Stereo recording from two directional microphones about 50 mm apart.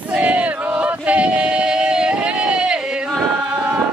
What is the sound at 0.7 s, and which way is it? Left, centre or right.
Male singing, right.